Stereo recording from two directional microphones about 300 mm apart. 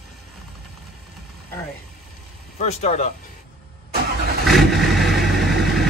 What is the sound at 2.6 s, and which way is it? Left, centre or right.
Speech, left.